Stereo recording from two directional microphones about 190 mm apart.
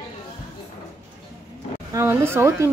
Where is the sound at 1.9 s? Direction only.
15° right (ahead or behind).